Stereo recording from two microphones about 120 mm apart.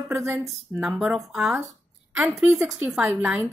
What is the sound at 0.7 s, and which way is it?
Speech, 5° right (ahead or behind).